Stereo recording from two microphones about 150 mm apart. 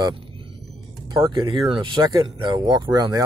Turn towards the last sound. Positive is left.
turn(degrees=-30)  # may be behind; listen again after turning